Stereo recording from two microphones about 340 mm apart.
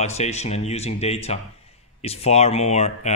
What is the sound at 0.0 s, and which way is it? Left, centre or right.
Speech, centre.